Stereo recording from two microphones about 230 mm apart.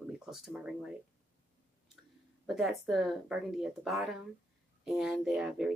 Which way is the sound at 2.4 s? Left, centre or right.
Centre.